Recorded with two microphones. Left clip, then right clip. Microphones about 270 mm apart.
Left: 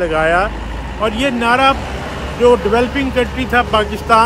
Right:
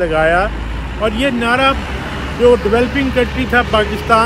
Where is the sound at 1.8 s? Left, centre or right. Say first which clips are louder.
Right 1 dB; left.